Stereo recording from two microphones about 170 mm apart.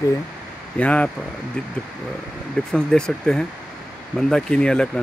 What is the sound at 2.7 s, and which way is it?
Speech, 5° left (ahead or behind).